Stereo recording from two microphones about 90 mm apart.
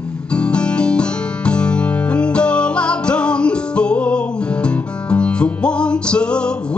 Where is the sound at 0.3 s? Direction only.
10° left (ahead or behind).